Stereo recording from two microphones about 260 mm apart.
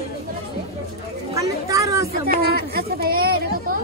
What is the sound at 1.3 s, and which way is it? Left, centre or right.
Children playing, centre.